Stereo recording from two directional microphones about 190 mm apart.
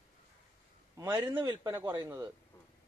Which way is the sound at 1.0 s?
15° right (ahead or behind).